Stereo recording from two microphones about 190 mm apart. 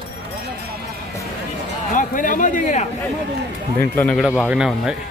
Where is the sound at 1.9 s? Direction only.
45° left (ahead or behind).